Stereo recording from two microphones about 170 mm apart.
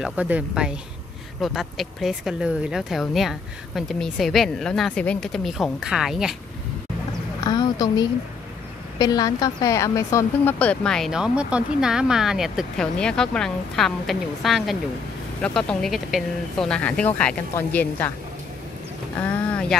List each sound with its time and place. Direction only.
0.0 s a woman's voice: 10° right (ahead or behind)
7.4 s a woman's voice: 25° left (ahead or behind)
19.1 s a sound: 5° left (ahead or behind)